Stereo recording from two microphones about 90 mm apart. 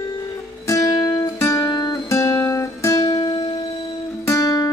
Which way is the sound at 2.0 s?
35° left (ahead or behind).